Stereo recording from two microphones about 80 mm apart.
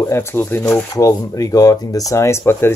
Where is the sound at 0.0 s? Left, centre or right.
Left.